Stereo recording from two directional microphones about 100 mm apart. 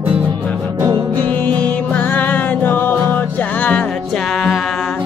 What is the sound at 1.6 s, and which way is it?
Music, 15° left (ahead or behind).